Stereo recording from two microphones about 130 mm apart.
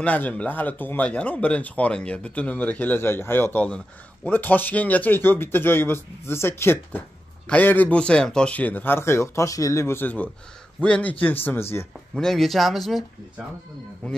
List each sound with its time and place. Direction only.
0.0 s speech: 10° left (ahead or behind)
14.0 s speech: 10° left (ahead or behind)